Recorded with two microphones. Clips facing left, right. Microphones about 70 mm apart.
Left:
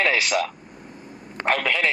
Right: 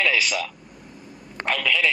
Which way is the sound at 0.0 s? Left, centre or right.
Left.